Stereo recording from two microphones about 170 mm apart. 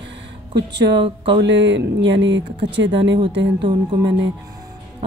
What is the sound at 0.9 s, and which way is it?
Speech, 30° right (ahead or behind).